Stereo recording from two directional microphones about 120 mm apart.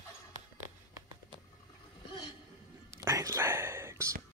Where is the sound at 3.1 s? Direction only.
30° right (ahead or behind).